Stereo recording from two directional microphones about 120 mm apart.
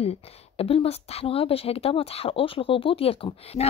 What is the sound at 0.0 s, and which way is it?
Speech, 55° left (ahead or behind).